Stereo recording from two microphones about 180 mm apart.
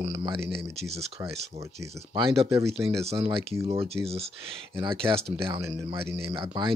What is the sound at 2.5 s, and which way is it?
Speech, 15° right (ahead or behind).